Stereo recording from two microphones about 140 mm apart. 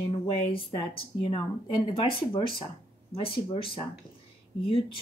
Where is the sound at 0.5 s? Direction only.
40° left (ahead or behind).